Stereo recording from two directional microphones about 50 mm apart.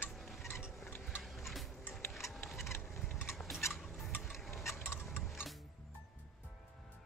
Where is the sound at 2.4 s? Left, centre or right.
Left.